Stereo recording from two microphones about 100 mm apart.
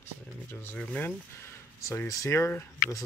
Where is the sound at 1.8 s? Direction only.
30° left (ahead or behind).